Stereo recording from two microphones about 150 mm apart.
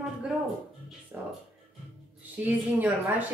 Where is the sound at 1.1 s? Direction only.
15° right (ahead or behind).